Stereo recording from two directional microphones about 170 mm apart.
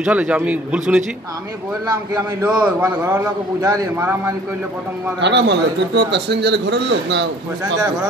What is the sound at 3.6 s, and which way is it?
Speech, 20° right (ahead or behind).